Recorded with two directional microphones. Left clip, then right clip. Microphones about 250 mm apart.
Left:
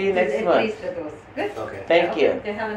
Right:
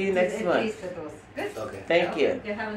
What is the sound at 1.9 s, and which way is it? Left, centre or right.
Speech, centre.